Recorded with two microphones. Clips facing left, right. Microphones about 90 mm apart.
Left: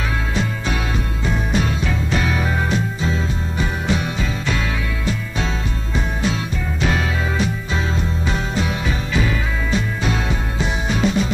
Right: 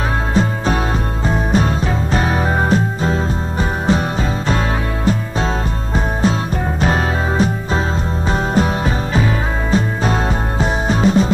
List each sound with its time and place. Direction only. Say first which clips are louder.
0.3 s music: right 6 dB; 40° right (ahead or behind)